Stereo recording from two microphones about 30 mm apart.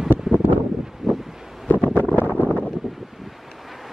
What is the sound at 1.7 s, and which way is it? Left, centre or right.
Wind noise, left.